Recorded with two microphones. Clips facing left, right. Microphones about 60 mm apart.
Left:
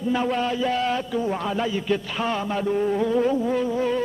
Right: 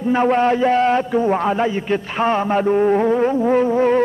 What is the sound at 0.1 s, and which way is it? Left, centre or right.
A man's voice, right.